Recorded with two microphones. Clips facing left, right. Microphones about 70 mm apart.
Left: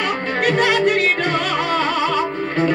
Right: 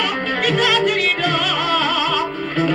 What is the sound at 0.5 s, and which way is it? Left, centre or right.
Music, left.